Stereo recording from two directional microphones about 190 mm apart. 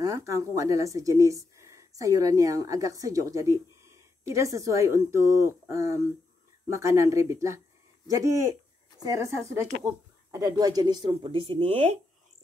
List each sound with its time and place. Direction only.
0.0 s a woman's voice: 15° right (ahead or behind); by 12.0 s 35° right (ahead or behind)